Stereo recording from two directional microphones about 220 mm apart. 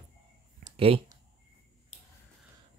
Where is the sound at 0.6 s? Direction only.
25° right (ahead or behind).